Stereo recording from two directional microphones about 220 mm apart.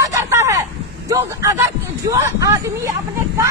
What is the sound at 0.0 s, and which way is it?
Vehicle, 15° right (ahead or behind).